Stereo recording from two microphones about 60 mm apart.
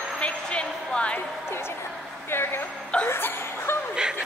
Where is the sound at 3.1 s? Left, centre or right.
Left.